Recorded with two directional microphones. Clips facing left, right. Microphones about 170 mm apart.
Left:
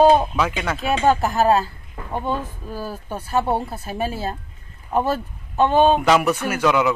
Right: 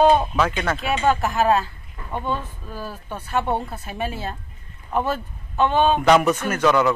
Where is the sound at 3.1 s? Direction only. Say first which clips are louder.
Left 2 dB; 35° left (ahead or behind).